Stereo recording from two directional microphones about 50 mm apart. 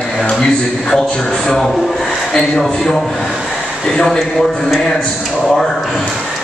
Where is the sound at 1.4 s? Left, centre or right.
Centre.